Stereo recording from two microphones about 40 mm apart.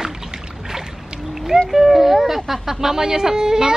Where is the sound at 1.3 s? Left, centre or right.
Centre.